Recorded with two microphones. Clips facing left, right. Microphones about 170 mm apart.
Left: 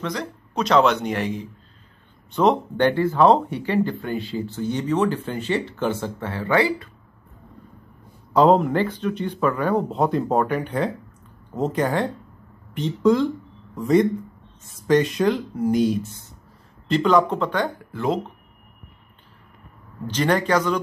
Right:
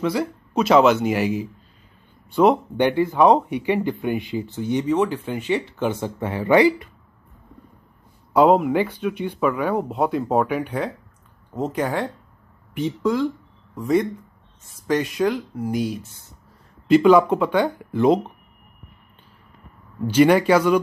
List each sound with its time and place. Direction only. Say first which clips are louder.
0.0 s speech: right 6 dB; 5° right (ahead or behind)
8.3 s speech: right 1 dB; 10° right (ahead or behind)
20.1 s speech: right 6 dB; 10° right (ahead or behind)